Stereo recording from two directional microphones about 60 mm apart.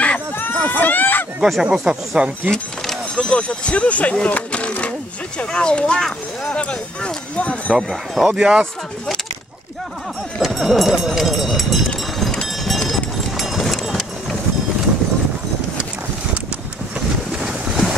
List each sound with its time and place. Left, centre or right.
0.4 s run: left
1.6 s speech: centre
2.5 s speech: centre
7.9 s speech: centre
10.4 s speech: centre
12.9 s run: centre
17.5 s boat: centre